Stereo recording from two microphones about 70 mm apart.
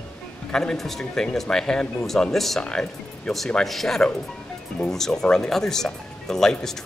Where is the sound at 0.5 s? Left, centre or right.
Centre.